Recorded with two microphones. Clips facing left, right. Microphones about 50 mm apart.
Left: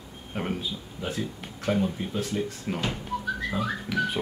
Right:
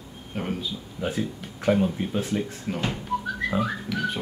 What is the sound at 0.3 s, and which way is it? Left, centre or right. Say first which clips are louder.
Speech: right 1 dB; centre.